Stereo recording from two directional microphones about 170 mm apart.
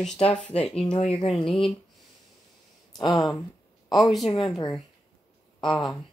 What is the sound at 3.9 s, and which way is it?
Speech, centre (ahead or behind).